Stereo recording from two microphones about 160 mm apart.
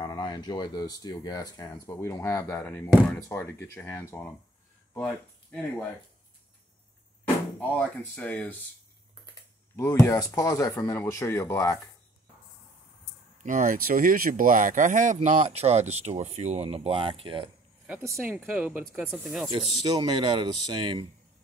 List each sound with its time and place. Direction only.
0.0 s speech: 25° left (ahead or behind); by 5.9 s 10° left (ahead or behind)
7.7 s speech: 5° left (ahead or behind)
9.8 s speech: 15° left (ahead or behind)
13.4 s speech: 55° right (ahead or behind)
15.1 s speech: 40° right (ahead or behind)
17.8 s speech: 10° right (ahead or behind)
18.9 s speech: 5° left (ahead or behind)
19.8 s speech: 25° right (ahead or behind)